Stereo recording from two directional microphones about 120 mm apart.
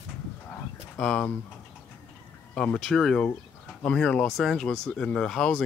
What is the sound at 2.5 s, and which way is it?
Speech, 5° left (ahead or behind).